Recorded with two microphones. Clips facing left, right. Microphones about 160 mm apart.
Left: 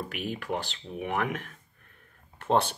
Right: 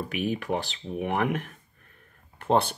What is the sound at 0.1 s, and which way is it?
Speech, 15° right (ahead or behind).